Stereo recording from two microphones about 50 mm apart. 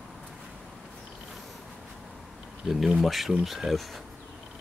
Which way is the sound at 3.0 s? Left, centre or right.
Centre.